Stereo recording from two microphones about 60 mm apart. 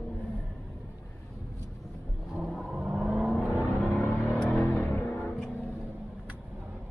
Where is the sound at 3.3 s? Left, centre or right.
Right.